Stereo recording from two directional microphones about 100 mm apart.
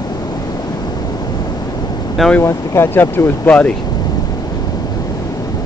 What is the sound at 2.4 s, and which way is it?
Speech, 25° left (ahead or behind).